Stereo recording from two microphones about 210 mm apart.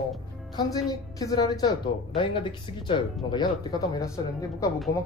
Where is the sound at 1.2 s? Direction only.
15° left (ahead or behind).